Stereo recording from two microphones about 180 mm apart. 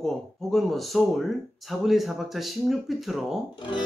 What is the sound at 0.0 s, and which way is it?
Speech, centre (ahead or behind).